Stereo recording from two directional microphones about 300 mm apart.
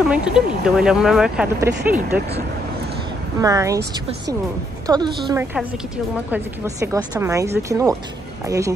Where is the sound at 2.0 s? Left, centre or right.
Right.